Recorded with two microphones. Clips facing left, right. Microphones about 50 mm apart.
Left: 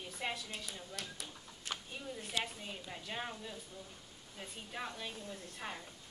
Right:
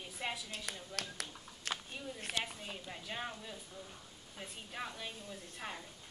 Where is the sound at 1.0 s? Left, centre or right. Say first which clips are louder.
Right 3 dB; right.